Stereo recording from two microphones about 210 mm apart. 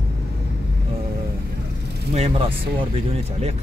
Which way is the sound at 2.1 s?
30° right (ahead or behind).